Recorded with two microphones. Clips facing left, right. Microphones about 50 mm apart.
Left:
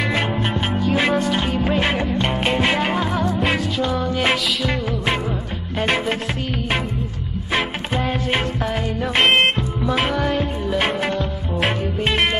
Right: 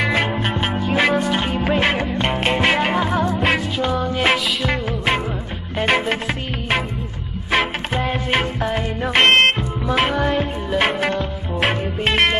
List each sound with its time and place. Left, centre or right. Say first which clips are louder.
0.0 s music: right 2 dB; centre
3.5 s music: right 1 dB; centre
7.5 s music: right 2 dB; centre